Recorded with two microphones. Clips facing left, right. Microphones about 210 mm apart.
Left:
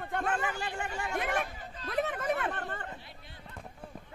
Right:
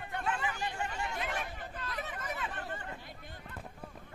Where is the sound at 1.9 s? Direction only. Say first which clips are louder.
Left 11 dB; 55° left (ahead or behind).